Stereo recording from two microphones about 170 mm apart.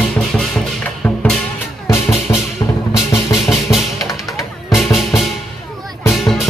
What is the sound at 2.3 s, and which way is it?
Music, 20° left (ahead or behind).